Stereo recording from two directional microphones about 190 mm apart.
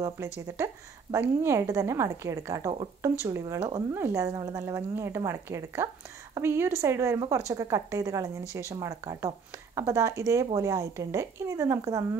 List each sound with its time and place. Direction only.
0.0 s speech: 15° right (ahead or behind)